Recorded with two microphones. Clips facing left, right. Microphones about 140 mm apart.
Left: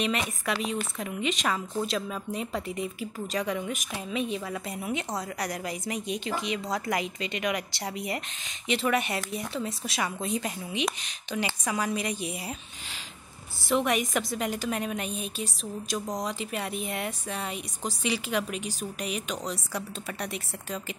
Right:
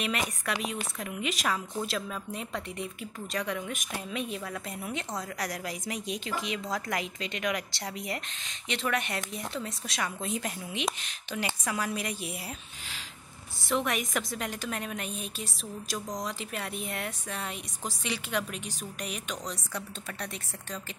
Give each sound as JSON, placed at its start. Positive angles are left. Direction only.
{"t": 0.0, "sound": "speech", "side_deg": 0}
{"t": 13.7, "sound": "speech", "side_deg": 0}